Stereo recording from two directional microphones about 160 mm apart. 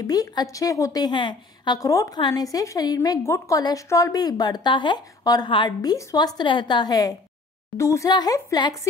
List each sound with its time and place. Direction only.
0.0 s a woman's voice: 25° left (ahead or behind)